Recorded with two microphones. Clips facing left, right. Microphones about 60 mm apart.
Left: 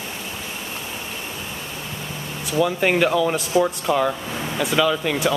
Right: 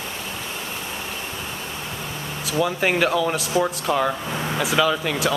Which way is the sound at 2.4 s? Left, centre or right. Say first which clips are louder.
Left 2 dB; centre.